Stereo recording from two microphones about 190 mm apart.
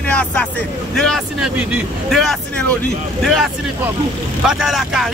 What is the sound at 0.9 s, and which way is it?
Speech, centre (ahead or behind).